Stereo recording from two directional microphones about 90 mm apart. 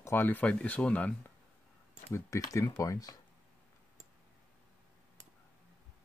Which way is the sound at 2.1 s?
35° left (ahead or behind).